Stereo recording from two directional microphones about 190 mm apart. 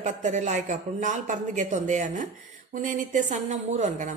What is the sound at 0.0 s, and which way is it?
Speech, 35° right (ahead or behind).